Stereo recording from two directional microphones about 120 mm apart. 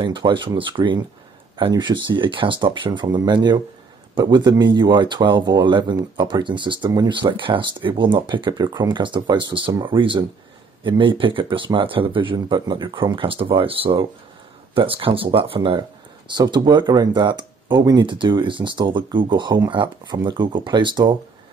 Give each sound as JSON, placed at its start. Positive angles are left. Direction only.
{"t": 0.0, "sound": "speech", "side_deg": -45}